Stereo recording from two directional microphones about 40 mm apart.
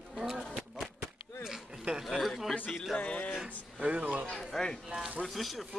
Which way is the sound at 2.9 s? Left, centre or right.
Left.